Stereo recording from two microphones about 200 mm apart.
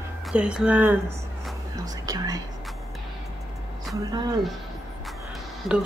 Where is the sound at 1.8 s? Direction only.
20° right (ahead or behind).